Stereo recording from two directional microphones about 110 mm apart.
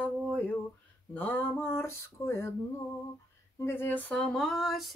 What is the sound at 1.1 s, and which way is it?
Speech, 15° left (ahead or behind).